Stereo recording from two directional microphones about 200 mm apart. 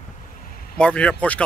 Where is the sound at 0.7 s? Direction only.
5° left (ahead or behind).